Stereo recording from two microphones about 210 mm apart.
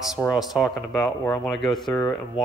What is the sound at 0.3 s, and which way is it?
A man's voice, centre (ahead or behind).